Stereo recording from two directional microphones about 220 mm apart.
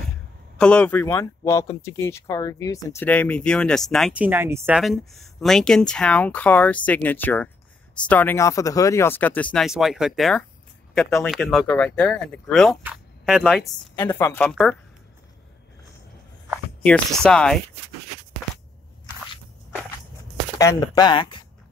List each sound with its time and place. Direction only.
0.6 s speech: 5° left (ahead or behind)
16.4 s speech: 5° left (ahead or behind)
20.5 s speech: 15° left (ahead or behind)